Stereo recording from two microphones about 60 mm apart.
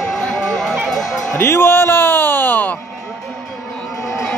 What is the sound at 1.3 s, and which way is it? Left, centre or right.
Music, left.